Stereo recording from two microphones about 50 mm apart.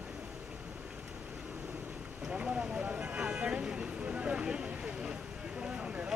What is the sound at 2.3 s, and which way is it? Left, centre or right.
Vehicle, right.